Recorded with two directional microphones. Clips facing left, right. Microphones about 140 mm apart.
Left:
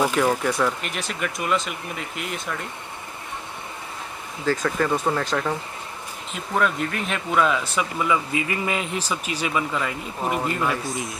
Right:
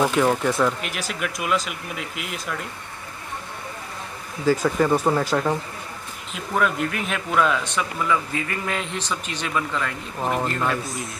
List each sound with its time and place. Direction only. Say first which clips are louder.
0.0 s speech: right 1 dB; centre (ahead or behind)
4.5 s speech: right 3 dB; 10° right (ahead or behind)